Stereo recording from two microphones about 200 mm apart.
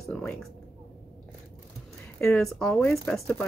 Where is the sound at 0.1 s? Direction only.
5° left (ahead or behind).